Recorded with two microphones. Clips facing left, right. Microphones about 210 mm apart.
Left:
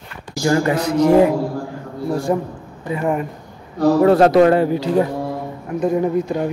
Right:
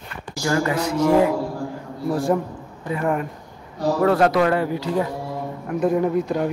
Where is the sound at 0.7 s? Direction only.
35° left (ahead or behind).